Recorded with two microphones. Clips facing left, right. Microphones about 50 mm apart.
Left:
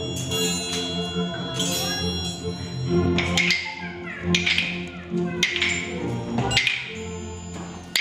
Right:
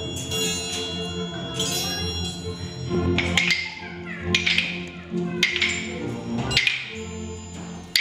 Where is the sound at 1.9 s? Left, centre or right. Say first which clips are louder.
Left 2 dB; centre.